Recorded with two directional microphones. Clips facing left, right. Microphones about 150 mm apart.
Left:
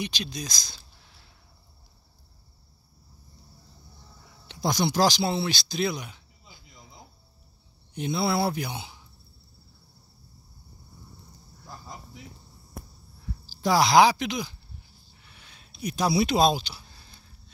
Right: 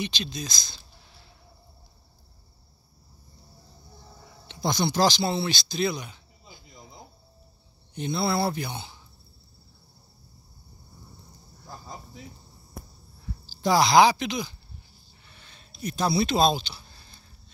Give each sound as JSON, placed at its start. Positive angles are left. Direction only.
{"t": 0.0, "sound": "speech", "side_deg": 10}
{"t": 4.6, "sound": "speech", "side_deg": 10}
{"t": 6.4, "sound": "cricket", "side_deg": -20}
{"t": 7.9, "sound": "speech", "side_deg": 5}
{"t": 13.5, "sound": "speech", "side_deg": 5}
{"t": 15.2, "sound": "a sound", "side_deg": 5}